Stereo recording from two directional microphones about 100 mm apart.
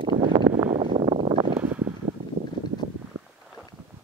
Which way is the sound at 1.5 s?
15° right (ahead or behind).